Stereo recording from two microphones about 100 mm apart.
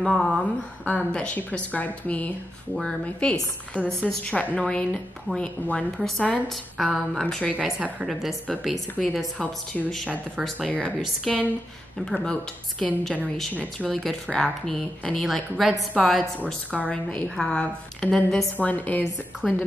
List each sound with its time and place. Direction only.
0.0 s speech: centre (ahead or behind)
0.4 s a woman's voice: 15° left (ahead or behind)